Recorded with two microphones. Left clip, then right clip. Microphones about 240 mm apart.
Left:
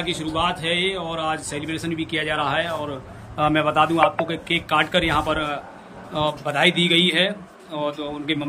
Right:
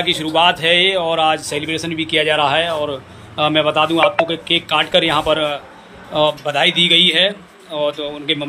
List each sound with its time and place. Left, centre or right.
0.0 s speech: centre